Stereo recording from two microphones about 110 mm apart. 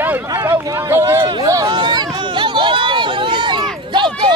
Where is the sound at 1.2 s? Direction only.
35° right (ahead or behind).